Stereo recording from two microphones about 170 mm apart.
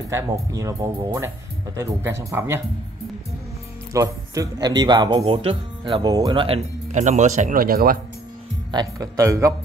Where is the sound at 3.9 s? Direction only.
20° right (ahead or behind); by 8.0 s 60° right (ahead or behind).